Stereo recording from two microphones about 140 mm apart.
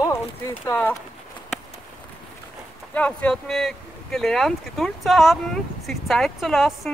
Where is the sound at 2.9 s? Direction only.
10° left (ahead or behind).